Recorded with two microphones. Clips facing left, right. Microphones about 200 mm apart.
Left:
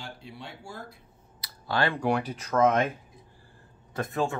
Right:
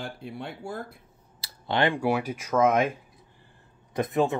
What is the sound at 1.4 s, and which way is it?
Clicking, 20° right (ahead or behind).